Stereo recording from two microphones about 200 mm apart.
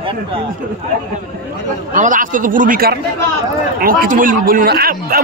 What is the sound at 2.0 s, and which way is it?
A man's voice, 40° right (ahead or behind).